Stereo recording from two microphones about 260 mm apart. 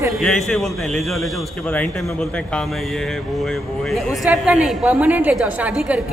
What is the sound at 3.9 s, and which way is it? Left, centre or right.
A woman's voice, centre.